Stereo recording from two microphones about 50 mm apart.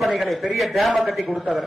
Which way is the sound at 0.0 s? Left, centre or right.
Centre.